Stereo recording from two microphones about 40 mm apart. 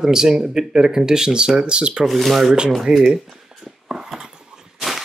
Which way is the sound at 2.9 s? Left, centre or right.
Centre.